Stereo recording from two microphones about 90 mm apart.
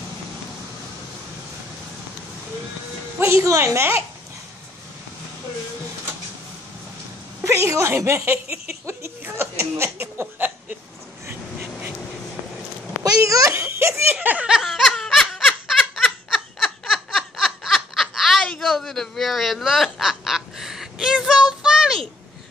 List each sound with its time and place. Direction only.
3.2 s a woman's voice: 35° right (ahead or behind)
7.4 s speech: 35° right (ahead or behind)
13.0 s giggle: 40° right (ahead or behind)
14.1 s snicker: 15° right (ahead or behind); by 18.5 s centre (ahead or behind)
18.6 s honk: centre (ahead or behind)